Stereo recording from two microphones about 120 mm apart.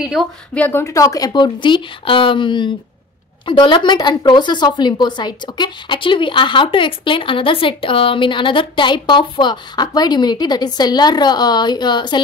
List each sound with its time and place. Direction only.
0.0 s a woman's voice: 5° right (ahead or behind)
0.6 s speech: 15° left (ahead or behind)
0.8 s a woman's voice: 30° left (ahead or behind)